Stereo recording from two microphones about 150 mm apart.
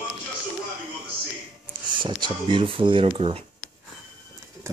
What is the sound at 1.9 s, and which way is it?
Speech, 30° right (ahead or behind).